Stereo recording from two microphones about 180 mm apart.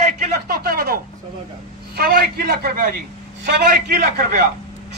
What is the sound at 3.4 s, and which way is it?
Speech, 60° right (ahead or behind).